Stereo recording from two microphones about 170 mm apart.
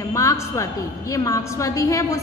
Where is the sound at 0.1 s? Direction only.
20° left (ahead or behind).